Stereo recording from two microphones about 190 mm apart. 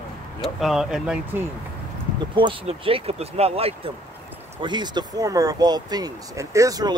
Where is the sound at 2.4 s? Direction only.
25° right (ahead or behind).